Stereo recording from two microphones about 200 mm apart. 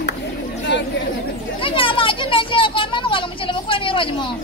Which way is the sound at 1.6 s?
25° left (ahead or behind).